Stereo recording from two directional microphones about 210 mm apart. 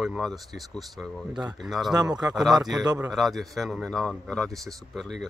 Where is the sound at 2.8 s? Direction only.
20° right (ahead or behind).